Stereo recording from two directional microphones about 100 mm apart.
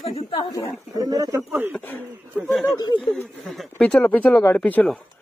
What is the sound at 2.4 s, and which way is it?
Speech, centre (ahead or behind).